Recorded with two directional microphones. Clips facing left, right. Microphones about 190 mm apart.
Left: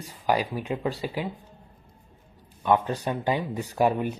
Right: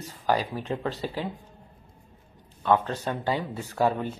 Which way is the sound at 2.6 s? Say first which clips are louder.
Left 1 dB; 15° left (ahead or behind).